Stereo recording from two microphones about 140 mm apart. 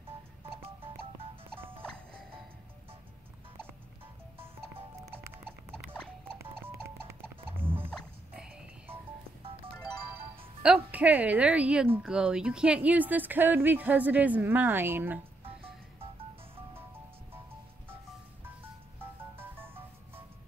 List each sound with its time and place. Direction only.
1.5 s music: 15° right (ahead or behind)
1.8 s music: 5° left (ahead or behind)
5.1 s horse: 15° right (ahead or behind)
6.5 s music: 15° right (ahead or behind)
10.6 s speech: 10° right (ahead or behind)